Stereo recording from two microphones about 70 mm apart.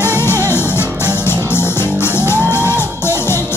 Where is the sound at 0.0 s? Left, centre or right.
Left.